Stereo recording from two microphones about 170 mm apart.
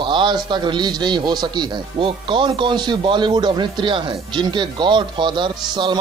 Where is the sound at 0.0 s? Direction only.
30° right (ahead or behind).